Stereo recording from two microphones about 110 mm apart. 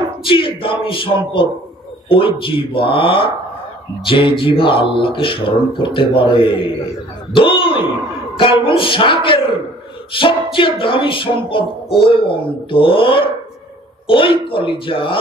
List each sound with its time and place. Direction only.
0.2 s music: 50° left (ahead or behind)
7.3 s speech: 50° left (ahead or behind)
8.4 s music: 50° left (ahead or behind)